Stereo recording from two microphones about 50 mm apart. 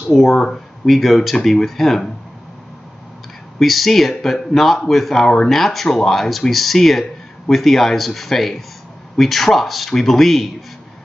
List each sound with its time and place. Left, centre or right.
0.1 s speech: centre
3.5 s speech: centre